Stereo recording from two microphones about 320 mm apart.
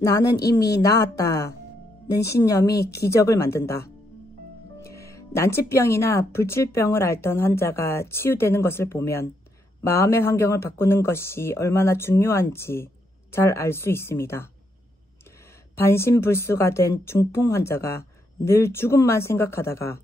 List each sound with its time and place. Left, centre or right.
0.0 s speech: centre
15.7 s speech: centre